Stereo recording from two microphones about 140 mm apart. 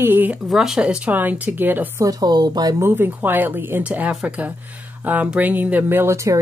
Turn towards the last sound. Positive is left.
turn(degrees=-20)  # may be behind; listen again after turning